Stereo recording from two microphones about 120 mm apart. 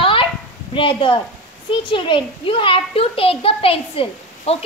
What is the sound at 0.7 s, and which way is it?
A child's voice, 45° left (ahead or behind).